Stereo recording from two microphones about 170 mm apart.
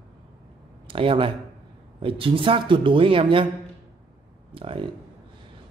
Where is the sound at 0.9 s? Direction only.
30° right (ahead or behind).